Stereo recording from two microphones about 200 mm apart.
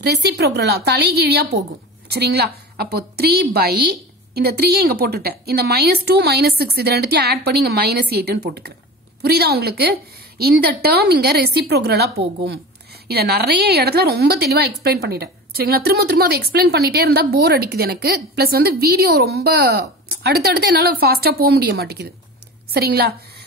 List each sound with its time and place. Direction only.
0.0 s a woman's voice: 55° right (ahead or behind)
13.1 s a woman's voice: 50° right (ahead or behind)